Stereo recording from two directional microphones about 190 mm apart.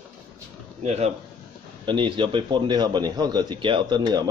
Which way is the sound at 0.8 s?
35° right (ahead or behind).